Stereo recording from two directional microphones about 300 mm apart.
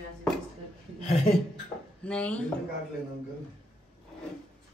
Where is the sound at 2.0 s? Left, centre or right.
Centre.